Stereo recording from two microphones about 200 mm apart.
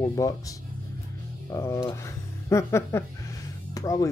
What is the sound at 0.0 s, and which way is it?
Music, 20° left (ahead or behind).